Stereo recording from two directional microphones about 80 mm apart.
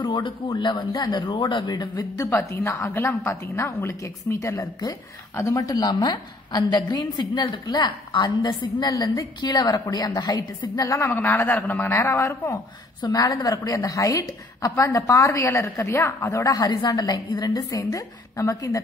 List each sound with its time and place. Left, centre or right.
0.0 s a man's voice: left
1.0 s a woman's voice: left
1.3 s a woman's voice: left
2.2 s a woman's voice: left
11.1 s speech: left
12.0 s a woman's voice: left
13.1 s a woman's voice: left
15.4 s a woman's voice: left